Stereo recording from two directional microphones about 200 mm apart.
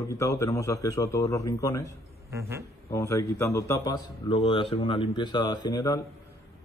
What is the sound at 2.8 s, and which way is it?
A man's voice, 15° left (ahead or behind).